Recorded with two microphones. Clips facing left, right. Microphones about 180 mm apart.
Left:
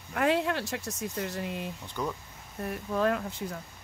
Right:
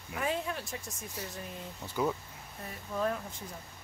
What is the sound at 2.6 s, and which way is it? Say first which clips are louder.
Speech: left 6 dB; 65° left (ahead or behind).